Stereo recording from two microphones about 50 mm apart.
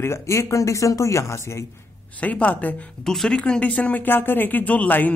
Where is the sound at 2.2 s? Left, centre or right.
Left.